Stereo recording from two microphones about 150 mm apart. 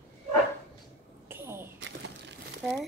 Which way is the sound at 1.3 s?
15° right (ahead or behind).